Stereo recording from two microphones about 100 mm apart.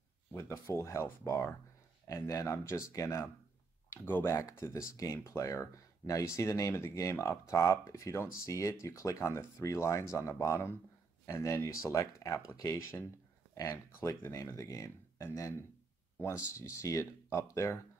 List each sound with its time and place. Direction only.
0.3 s speech: 30° left (ahead or behind)
13.6 s speech: 30° left (ahead or behind)